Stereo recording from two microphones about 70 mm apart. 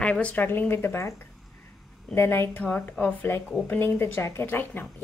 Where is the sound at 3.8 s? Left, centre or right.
Left.